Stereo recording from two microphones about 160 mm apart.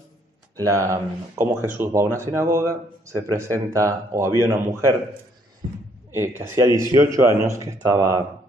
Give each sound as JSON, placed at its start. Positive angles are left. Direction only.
{"t": 0.6, "sound": "a man's voice", "side_deg": -20}
{"t": 5.6, "sound": "a sound", "side_deg": -35}
{"t": 6.1, "sound": "a man's voice", "side_deg": -15}